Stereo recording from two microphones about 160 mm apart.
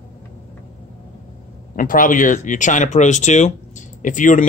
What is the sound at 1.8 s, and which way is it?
Speech, 55° left (ahead or behind).